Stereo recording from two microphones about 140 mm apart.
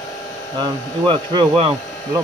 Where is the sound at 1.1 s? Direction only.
35° right (ahead or behind).